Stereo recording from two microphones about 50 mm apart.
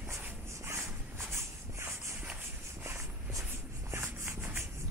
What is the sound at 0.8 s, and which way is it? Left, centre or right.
Shuffle, right.